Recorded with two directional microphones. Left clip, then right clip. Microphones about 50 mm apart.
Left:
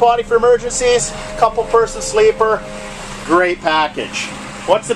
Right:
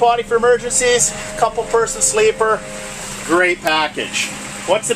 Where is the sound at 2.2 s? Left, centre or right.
Centre.